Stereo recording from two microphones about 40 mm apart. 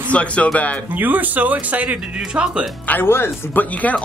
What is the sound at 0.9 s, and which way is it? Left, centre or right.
Speech, right.